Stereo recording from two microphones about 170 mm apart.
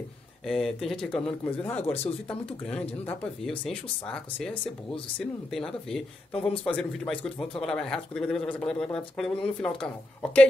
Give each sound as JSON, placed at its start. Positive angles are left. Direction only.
{"t": 0.5, "sound": "speech", "side_deg": 0}
{"t": 1.8, "sound": "speech", "side_deg": 35}
{"t": 2.2, "sound": "speech", "side_deg": 5}